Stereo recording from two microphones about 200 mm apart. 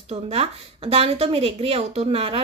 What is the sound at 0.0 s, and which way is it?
A woman's voice, 30° right (ahead or behind).